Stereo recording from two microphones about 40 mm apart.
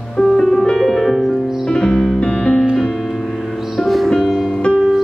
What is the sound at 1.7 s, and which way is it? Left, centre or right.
Music, left.